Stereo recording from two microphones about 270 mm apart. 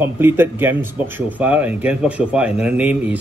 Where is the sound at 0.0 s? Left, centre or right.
Centre.